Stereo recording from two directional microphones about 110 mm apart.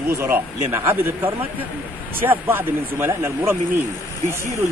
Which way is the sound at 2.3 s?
20° right (ahead or behind).